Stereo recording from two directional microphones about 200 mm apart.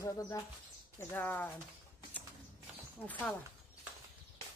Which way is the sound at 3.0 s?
5° left (ahead or behind).